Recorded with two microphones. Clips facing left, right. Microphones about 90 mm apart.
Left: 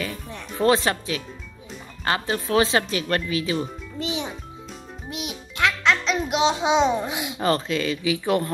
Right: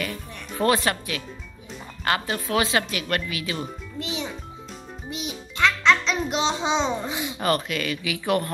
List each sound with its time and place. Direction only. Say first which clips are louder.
0.0 s speech: left 1 dB; 20° left (ahead or behind)
4.0 s music: left 3 dB; 20° left (ahead or behind)
5.1 s music: even; 5° left (ahead or behind)
7.4 s speech: left 2 dB; 25° left (ahead or behind)